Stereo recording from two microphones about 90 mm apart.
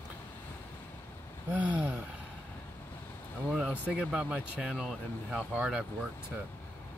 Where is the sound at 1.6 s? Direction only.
15° right (ahead or behind).